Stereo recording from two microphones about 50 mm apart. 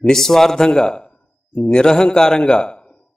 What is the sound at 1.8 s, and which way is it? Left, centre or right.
Speech, centre.